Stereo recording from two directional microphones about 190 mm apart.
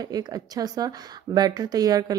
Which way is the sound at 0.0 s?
20° right (ahead or behind).